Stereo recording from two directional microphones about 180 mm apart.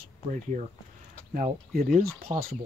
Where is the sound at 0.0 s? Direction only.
40° right (ahead or behind).